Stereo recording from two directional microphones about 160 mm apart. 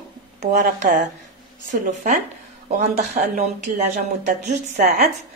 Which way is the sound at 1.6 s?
50° right (ahead or behind).